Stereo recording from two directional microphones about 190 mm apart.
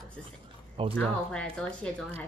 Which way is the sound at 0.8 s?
30° right (ahead or behind).